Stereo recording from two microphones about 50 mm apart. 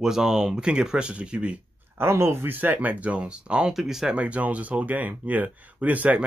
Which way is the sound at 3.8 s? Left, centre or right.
Centre.